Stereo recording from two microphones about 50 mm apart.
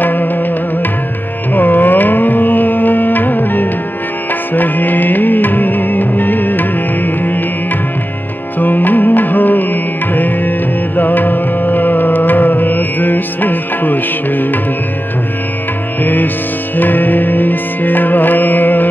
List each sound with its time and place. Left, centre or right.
0.0 s music: left
1.5 s carnatic music: left
4.6 s music: left
8.5 s music: left
16.0 s music: left